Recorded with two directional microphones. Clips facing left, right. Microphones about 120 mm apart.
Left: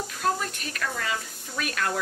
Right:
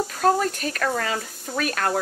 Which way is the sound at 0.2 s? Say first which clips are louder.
Right 7 dB; 45° right (ahead or behind).